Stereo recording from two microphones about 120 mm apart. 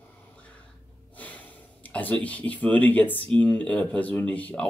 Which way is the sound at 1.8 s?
15° left (ahead or behind).